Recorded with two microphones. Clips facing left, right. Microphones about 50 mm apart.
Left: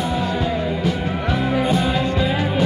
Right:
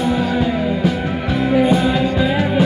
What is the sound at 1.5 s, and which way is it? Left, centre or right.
Music, centre.